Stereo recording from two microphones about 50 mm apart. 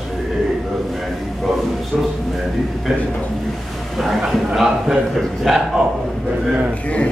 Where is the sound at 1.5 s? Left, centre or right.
Centre.